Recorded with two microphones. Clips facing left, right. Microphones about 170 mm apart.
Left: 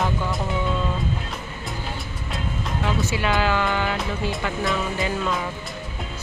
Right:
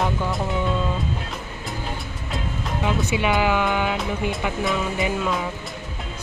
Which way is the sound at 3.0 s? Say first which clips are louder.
Right 3 dB; 20° right (ahead or behind).